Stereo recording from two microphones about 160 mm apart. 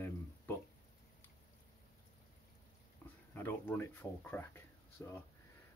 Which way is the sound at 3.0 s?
15° left (ahead or behind).